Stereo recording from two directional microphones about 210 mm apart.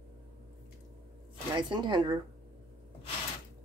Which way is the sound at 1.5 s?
20° right (ahead or behind).